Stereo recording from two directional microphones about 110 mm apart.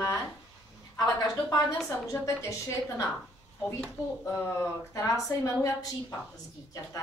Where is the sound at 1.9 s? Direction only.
30° left (ahead or behind).